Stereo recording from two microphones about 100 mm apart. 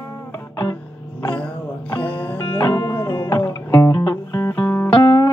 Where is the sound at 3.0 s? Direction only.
30° left (ahead or behind).